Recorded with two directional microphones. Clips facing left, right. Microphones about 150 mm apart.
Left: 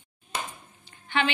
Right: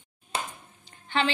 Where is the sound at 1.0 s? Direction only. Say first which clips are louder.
Even; 35° right (ahead or behind).